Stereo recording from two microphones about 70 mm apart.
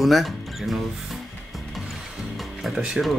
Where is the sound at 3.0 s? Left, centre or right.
Centre.